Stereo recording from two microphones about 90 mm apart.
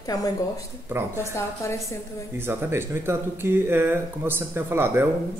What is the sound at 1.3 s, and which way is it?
Speech, 30° left (ahead or behind).